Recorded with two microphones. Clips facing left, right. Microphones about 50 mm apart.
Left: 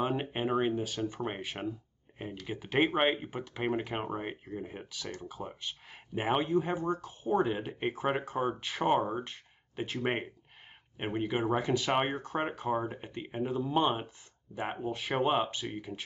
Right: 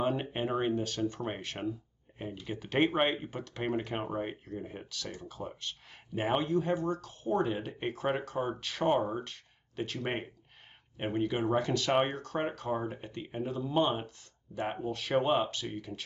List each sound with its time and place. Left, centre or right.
0.0 s speech: centre